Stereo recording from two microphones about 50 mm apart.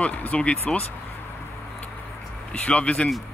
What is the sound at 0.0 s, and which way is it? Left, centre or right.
Speech, left.